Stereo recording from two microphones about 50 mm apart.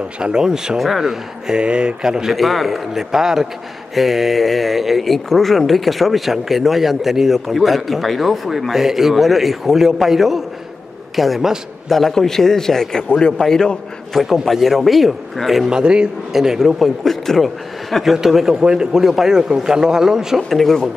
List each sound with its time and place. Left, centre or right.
0.2 s a man's voice: centre
1.6 s speech: centre
2.3 s a man's voice: centre
14.4 s speech: centre
15.7 s a man's voice: centre
17.0 s speech: centre
18.0 s a man's voice: centre
20.4 s speech: centre